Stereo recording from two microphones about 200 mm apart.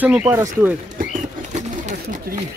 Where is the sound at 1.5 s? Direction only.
35° right (ahead or behind).